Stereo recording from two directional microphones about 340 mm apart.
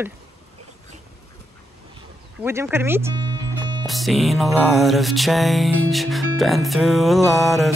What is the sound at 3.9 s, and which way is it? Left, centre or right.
Music, centre.